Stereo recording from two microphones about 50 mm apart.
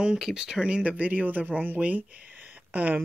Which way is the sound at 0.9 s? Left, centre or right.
Right.